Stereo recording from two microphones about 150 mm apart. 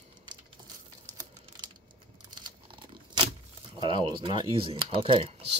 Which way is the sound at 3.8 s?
30° right (ahead or behind).